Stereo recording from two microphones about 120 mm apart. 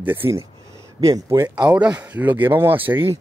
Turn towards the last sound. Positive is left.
turn(degrees=-20)  # may be behind; listen again after turning